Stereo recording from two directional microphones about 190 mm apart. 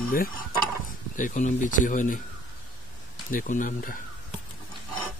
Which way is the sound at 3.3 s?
45° left (ahead or behind).